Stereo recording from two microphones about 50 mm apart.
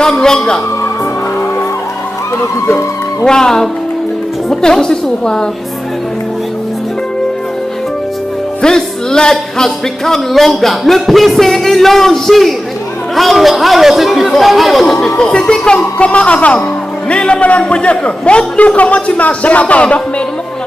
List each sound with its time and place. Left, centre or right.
0.0 s a woman's voice: centre
3.3 s a woman's voice: centre
8.6 s speech: centre
15.1 s a man's voice: centre